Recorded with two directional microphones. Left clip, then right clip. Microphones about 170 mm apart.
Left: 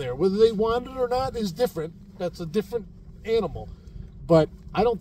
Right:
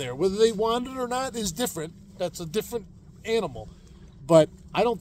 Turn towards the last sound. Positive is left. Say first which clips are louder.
# left 1 dB
turn(degrees=-20)  # may be behind; listen again after turning